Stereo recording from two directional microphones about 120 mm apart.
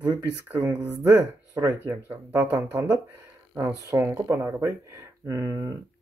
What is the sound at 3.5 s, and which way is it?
Speech, 20° right (ahead or behind).